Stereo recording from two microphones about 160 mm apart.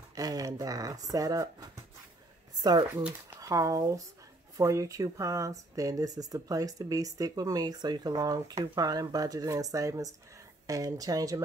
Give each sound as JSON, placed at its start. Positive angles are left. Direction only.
{"t": 0.1, "sound": "speech", "side_deg": -20}
{"t": 3.0, "sound": "speech", "side_deg": -10}
{"t": 3.3, "sound": "speech", "side_deg": -20}